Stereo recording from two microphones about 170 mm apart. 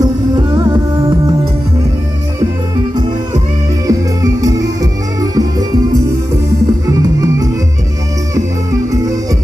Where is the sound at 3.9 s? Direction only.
20° right (ahead or behind).